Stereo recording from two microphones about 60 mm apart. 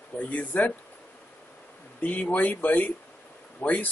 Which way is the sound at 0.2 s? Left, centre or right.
Left.